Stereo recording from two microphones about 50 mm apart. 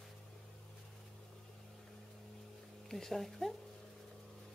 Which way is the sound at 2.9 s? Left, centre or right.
Centre.